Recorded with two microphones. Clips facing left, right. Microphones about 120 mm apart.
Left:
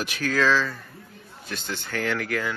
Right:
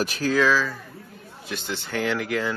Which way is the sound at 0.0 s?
35° right (ahead or behind).